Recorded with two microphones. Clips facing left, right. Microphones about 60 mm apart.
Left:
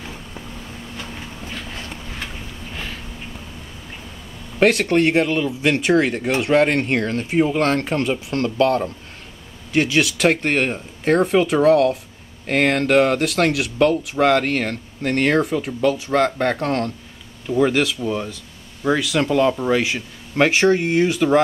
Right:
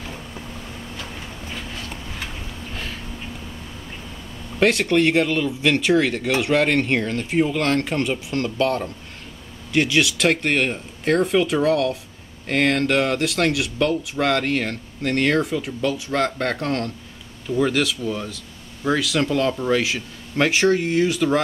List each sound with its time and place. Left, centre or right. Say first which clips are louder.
4.6 s speech: left 2 dB; left
5.2 s speech: left 1 dB; centre
5.5 s speech: left 1 dB; left
6.7 s speech: left 1 dB; centre
15.1 s speech: left 2 dB; left